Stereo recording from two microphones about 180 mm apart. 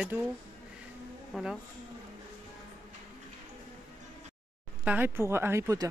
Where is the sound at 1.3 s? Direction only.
Centre (ahead or behind).